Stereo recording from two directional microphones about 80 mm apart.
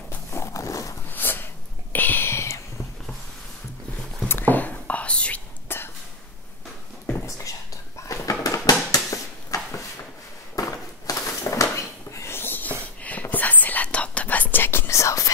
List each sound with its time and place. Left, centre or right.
0.1 s walk: left
1.1 s whispering: left
4.3 s whispering: left
5.7 s a sound: left
7.2 s whispering: left
8.9 s a sound: left
13.0 s whispering: left